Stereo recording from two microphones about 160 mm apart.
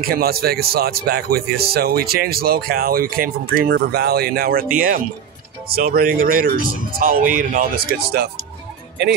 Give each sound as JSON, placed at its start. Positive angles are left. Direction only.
{"t": 0.1, "sound": "speech", "side_deg": -70}
{"t": 4.7, "sound": "speech", "side_deg": -60}